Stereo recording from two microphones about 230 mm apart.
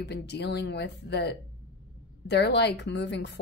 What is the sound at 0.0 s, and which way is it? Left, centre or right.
Speech, left.